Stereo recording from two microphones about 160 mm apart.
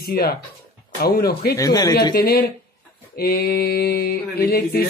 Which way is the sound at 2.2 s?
75° left (ahead or behind).